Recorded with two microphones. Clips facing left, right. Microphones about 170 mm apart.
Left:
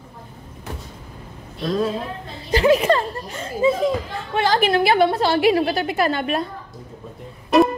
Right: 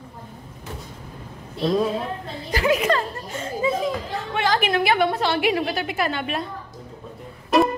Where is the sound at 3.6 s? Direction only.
25° left (ahead or behind).